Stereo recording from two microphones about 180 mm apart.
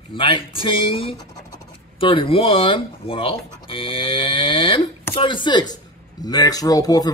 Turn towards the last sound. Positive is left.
turn(degrees=20)  # may be behind; listen again after turning